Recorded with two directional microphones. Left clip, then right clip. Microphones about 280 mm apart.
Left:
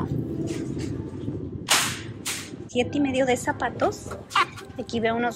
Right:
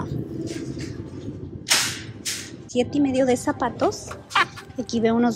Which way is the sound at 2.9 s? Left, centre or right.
Centre.